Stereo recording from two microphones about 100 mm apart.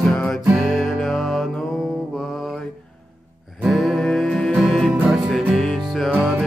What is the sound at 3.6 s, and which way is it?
Music, centre (ahead or behind).